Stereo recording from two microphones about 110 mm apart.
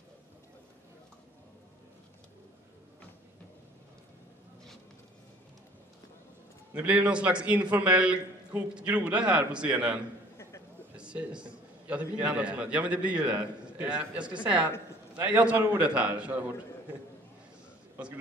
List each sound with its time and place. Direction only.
6.7 s a man's voice: 15° right (ahead or behind)
10.3 s a sound: 25° left (ahead or behind)
11.0 s a man's voice: 10° right (ahead or behind)